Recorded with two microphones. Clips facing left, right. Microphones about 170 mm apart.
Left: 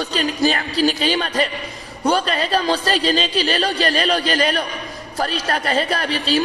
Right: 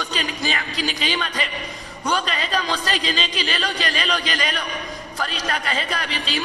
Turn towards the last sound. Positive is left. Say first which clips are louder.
# left 7 dB
turn(degrees=40)  # may be behind; listen again after turning